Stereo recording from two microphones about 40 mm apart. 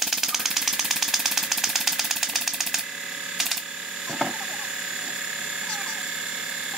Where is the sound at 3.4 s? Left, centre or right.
Centre.